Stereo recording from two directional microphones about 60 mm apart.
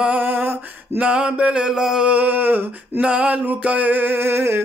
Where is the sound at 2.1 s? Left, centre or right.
Right.